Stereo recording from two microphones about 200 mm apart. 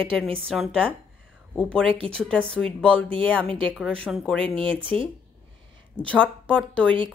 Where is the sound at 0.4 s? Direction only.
Centre (ahead or behind).